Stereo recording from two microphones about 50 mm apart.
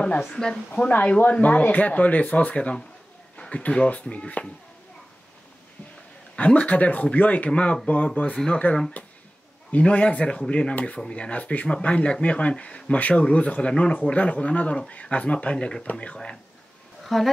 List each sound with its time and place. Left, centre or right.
0.7 s speech: left
1.4 s speech: left
6.3 s speech: left
8.6 s speech: left
9.7 s speech: left
17.0 s speech: centre